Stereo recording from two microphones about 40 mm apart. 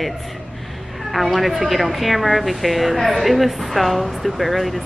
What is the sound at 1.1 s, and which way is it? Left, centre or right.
A woman's voice, centre.